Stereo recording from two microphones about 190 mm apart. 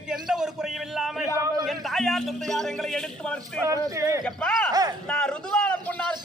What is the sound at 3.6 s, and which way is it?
Speech, 15° right (ahead or behind).